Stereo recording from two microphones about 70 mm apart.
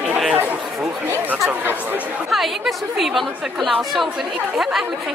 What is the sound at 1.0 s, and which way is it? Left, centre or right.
Chatter, right.